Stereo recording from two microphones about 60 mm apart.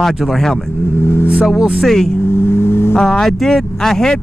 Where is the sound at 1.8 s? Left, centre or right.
Centre.